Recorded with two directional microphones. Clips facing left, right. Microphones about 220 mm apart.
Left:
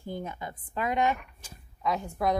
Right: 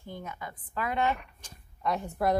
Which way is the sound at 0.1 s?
30° left (ahead or behind).